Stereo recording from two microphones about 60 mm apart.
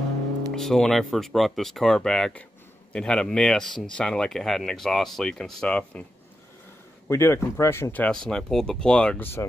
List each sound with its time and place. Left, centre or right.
0.5 s speech: centre
7.1 s speech: left
8.1 s speech: centre
9.2 s speech: left